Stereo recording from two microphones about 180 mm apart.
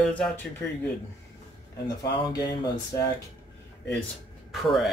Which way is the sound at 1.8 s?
20° left (ahead or behind).